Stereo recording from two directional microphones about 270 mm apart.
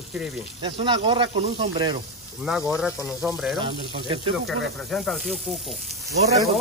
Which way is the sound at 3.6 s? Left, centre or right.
Centre.